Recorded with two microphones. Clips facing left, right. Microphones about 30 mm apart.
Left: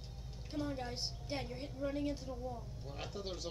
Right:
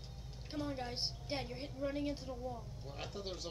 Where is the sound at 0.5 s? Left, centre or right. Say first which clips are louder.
Left 1 dB; centre.